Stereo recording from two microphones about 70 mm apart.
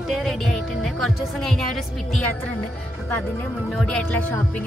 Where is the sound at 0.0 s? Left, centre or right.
Centre.